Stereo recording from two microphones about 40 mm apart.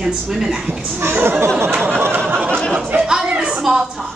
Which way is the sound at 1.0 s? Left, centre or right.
Right.